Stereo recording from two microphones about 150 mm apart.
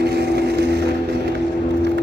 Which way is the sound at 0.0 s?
90° right.